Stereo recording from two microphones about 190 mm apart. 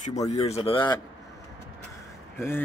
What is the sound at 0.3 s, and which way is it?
Speech, 30° left (ahead or behind).